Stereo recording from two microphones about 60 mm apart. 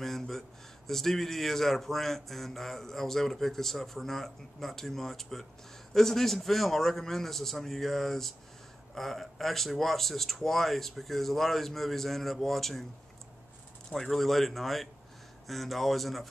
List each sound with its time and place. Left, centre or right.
0.0 s speech: centre
13.8 s speech: centre